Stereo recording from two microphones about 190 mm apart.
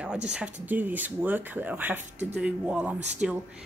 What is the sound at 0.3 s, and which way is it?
A woman's voice, 5° right (ahead or behind).